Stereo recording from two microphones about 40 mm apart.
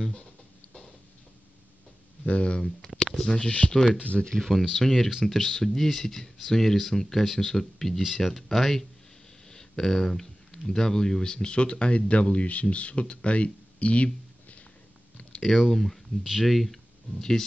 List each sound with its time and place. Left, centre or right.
2.2 s speech: left
15.4 s speech: centre
17.2 s speech: centre